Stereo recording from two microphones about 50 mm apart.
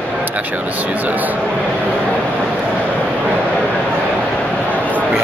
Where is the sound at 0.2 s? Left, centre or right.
Right.